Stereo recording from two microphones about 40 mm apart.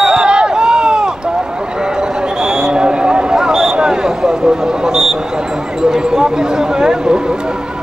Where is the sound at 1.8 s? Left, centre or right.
Centre.